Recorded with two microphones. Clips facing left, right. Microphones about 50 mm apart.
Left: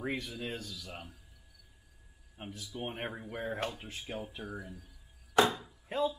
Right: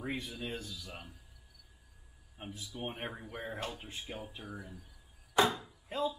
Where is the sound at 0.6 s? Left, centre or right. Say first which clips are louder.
Even; right.